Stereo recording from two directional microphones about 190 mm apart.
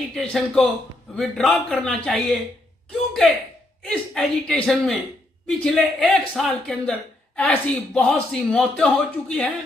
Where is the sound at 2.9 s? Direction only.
Centre (ahead or behind).